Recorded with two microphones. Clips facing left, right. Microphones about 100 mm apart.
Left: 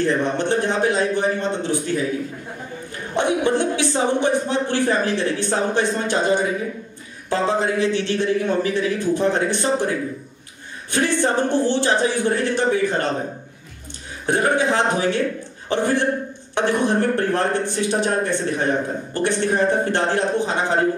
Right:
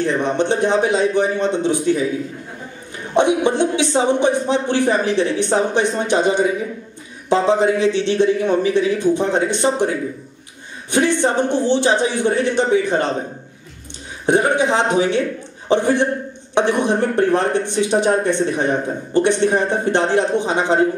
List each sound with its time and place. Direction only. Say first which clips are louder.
0.0 s speech: right 2 dB; 20° right (ahead or behind)
3.2 s speech: right 4 dB; 20° right (ahead or behind)
14.2 s speech: right 3 dB; 20° right (ahead or behind)